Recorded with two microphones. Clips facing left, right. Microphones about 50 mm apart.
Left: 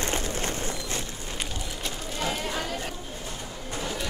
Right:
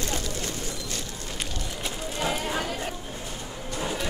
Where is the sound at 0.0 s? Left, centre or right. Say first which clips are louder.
Left 2 dB; left.